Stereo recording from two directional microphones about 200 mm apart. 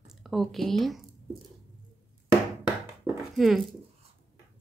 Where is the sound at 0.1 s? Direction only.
Centre (ahead or behind).